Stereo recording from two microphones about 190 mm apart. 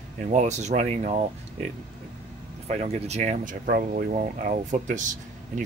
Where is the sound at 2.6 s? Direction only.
35° right (ahead or behind).